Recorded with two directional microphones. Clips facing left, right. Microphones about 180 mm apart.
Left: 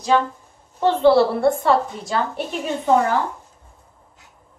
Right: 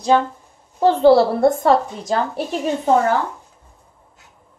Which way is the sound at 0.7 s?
40° right (ahead or behind).